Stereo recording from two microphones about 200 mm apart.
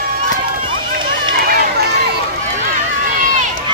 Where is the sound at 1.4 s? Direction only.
50° right (ahead or behind).